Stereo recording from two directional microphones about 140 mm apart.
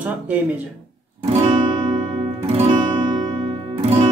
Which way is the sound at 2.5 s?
45° right (ahead or behind).